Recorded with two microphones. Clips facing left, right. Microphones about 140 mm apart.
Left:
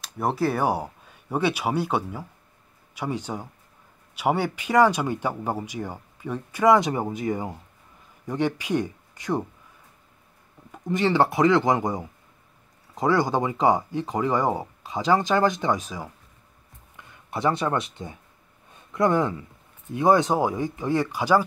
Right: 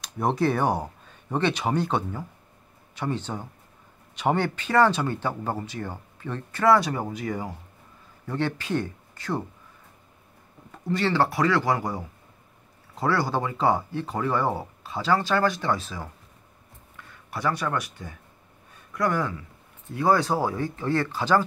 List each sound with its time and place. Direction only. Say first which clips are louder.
0.0 s speech: right 1 dB; 5° left (ahead or behind)
10.7 s speech: left 2 dB; 15° left (ahead or behind)